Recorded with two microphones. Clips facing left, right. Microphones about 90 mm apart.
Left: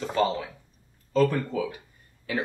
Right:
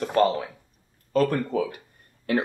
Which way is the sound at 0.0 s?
60° right (ahead or behind).